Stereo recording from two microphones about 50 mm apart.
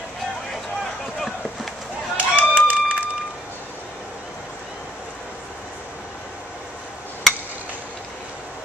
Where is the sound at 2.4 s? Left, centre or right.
Right.